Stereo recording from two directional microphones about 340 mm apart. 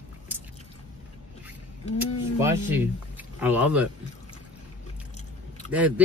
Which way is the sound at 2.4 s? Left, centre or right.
Centre.